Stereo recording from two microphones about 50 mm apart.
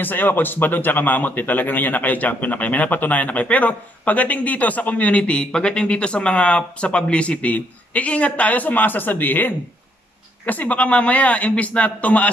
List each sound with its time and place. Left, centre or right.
0.0 s a man's voice: left